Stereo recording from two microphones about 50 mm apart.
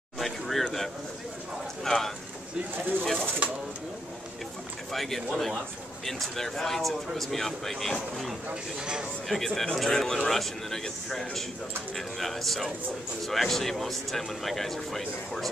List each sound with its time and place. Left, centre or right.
0.2 s a sound: centre
1.9 s speech: centre
3.4 s speech: right
4.9 s speech: centre
8.7 s speech: centre
9.3 s a man's voice: centre